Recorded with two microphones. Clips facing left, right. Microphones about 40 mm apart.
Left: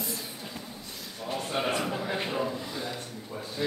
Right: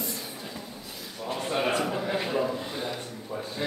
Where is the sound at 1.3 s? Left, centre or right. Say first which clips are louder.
Right 2 dB; right.